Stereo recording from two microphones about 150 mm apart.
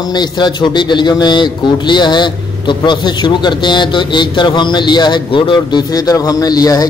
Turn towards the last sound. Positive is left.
turn(degrees=25)  # may be behind; listen again after turning